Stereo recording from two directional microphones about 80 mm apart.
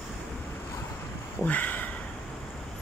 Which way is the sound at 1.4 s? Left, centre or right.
Left.